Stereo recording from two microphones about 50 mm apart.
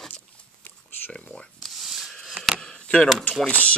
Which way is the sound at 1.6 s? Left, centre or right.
Centre.